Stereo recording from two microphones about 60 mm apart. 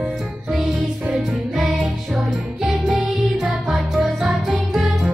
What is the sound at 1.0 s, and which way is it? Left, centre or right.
Music, centre.